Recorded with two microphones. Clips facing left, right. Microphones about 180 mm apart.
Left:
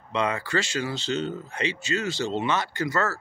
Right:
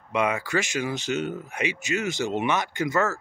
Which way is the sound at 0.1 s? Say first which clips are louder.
Right 1 dB; 10° right (ahead or behind).